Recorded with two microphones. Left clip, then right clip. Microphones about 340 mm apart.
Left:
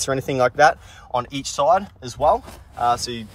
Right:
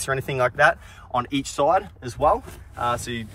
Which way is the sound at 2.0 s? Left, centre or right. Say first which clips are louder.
Left 2 dB; centre.